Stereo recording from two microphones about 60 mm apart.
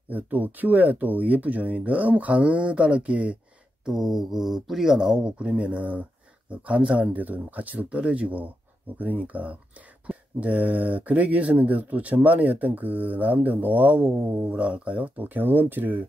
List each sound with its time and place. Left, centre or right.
0.1 s speech: right
3.8 s speech: centre; by 16.0 s right